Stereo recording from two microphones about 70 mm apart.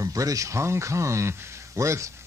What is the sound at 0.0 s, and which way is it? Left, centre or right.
Speech, right.